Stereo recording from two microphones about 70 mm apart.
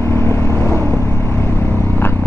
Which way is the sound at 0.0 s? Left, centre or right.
Left.